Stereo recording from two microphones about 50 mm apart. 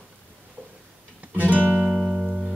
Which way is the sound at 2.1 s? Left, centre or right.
Centre.